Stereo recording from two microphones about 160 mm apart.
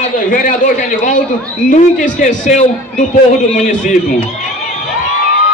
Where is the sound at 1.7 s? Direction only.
50° left (ahead or behind).